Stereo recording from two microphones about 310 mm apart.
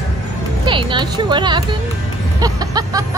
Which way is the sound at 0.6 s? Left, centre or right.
Centre.